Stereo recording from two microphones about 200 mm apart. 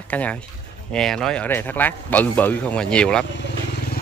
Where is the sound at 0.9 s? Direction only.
5° left (ahead or behind).